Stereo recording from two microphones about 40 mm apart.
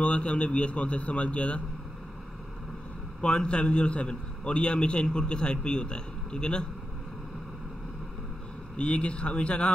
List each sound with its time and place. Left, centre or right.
0.0 s a man's voice: left
3.2 s a man's voice: left
8.7 s a man's voice: left